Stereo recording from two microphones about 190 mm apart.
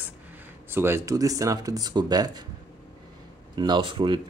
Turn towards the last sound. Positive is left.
turn(degrees=-25)  # may be behind; listen again after turning